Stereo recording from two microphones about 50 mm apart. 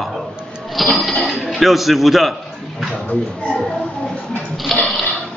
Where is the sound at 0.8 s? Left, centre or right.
Centre.